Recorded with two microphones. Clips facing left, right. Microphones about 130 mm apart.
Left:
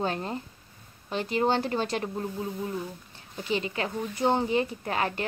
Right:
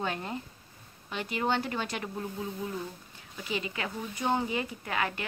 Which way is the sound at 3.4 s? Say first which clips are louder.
Left 5 dB; 30° left (ahead or behind).